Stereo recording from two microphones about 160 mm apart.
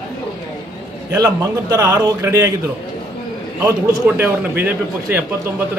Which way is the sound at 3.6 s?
15° right (ahead or behind).